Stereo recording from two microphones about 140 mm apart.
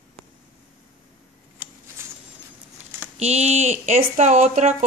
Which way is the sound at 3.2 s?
50° right (ahead or behind).